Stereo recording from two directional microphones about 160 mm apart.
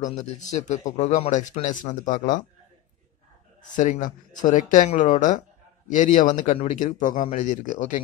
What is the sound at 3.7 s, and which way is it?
Speech, 50° left (ahead or behind).